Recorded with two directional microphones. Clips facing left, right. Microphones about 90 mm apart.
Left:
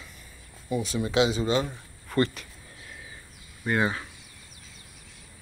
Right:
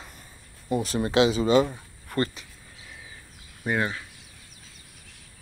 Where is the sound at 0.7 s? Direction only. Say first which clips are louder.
Right 2 dB; 50° right (ahead or behind); by 1.8 s 80° right.